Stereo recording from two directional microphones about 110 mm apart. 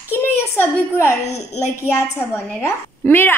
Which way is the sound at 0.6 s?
25° left (ahead or behind).